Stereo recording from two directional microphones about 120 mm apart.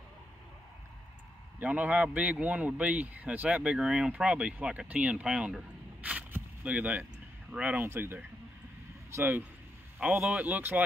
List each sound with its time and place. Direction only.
1.6 s speech: 10° right (ahead or behind)